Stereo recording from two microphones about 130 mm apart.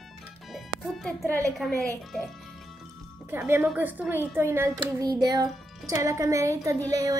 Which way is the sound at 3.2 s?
15° right (ahead or behind).